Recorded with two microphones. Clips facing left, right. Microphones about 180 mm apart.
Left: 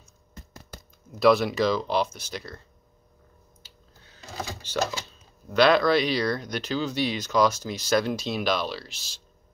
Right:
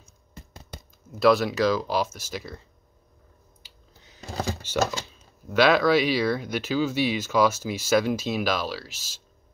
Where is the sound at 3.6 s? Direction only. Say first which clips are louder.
Even; 15° right (ahead or behind).